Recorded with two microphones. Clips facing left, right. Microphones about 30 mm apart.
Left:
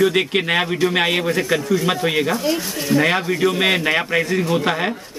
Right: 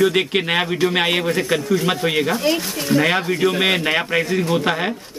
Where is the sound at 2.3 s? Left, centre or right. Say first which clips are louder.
Right 1 dB; right.